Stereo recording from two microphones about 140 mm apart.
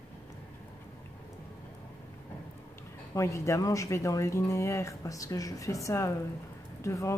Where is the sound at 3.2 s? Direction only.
20° left (ahead or behind).